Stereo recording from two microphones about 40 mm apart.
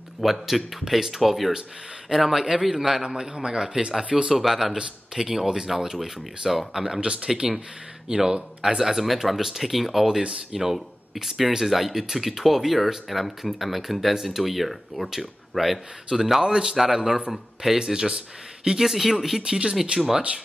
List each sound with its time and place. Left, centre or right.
0.2 s speech: centre
3.0 s speech: right
4.4 s speech: centre
7.0 s speech: right
7.3 s speech: centre
8.9 s speech: centre
10.2 s speech: centre
16.1 s speech: centre
18.9 s speech: centre
19.4 s speech: centre